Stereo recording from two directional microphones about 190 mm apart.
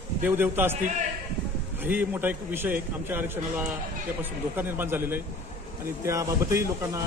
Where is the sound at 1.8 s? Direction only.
10° right (ahead or behind).